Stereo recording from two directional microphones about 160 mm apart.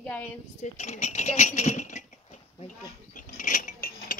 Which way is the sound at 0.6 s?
45° left (ahead or behind).